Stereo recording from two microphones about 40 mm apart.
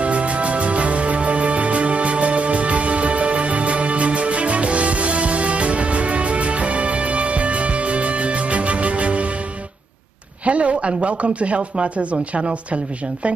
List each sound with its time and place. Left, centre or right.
0.0 s music: right
10.4 s speech: right